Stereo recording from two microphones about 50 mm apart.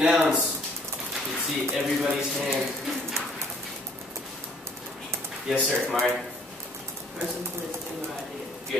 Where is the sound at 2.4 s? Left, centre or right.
Centre.